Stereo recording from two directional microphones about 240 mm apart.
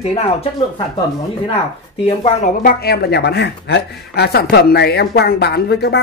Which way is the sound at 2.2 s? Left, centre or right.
Left.